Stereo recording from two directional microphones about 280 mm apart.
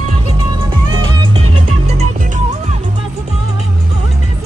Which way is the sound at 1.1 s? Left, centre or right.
Centre.